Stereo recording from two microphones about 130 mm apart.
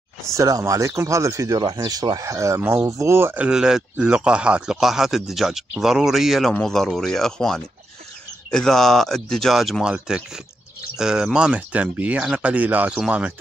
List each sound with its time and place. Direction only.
0.3 s speech: 25° right (ahead or behind); by 13.3 s 10° right (ahead or behind)